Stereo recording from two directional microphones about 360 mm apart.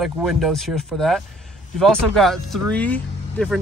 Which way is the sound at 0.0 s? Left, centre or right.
Centre.